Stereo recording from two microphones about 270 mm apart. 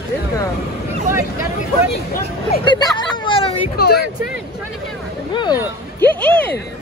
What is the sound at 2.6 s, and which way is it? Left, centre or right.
Hubbub, centre.